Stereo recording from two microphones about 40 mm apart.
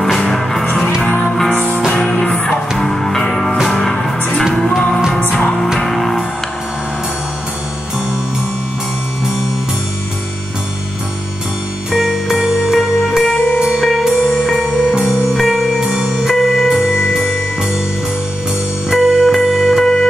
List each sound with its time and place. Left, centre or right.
0.4 s music: centre
1.5 s music: left
2.0 s music: centre
2.3 s music: left
2.8 s music: centre
11.9 s music: centre
13.9 s music: centre
15.8 s music: right
16.3 s music: centre
18.9 s music: centre
19.8 s music: centre